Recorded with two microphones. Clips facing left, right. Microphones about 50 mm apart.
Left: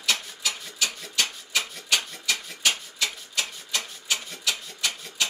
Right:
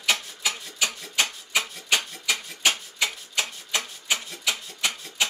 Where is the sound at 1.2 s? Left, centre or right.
Centre.